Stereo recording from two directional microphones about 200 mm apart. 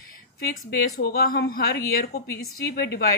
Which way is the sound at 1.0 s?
50° left (ahead or behind).